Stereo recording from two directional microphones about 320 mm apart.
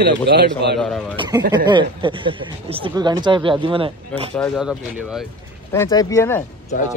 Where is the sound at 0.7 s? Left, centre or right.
Centre.